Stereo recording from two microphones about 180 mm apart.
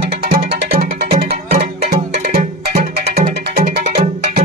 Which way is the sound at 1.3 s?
60° right (ahead or behind).